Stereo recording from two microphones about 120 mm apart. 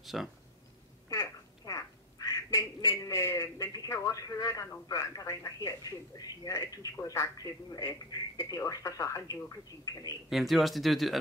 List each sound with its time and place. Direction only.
0.0 s speech: centre (ahead or behind)
1.0 s quack: 25° left (ahead or behind)
4.8 s a man's voice: 30° left (ahead or behind)
10.3 s speech: centre (ahead or behind)